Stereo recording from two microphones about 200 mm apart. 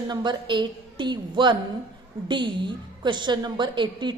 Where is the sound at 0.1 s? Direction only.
20° right (ahead or behind).